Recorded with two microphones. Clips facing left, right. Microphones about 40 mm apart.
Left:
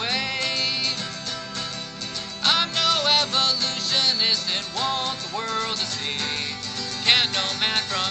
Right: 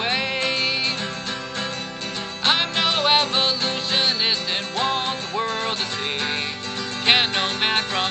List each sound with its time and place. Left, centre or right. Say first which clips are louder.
0.0 s music: right 3 dB; right
2.4 s music: right 1 dB; right
7.1 s music: right 2 dB; right